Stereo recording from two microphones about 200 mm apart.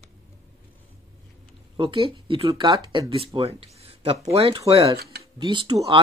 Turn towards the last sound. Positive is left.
turn(degrees=-25)  # may be behind; listen again after turning